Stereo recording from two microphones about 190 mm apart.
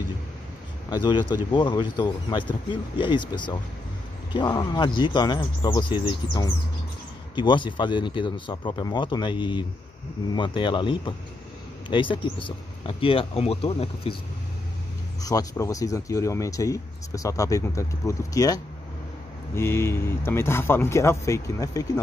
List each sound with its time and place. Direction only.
0.8 s speech: 25° left (ahead or behind)
15.2 s speech: 15° left (ahead or behind)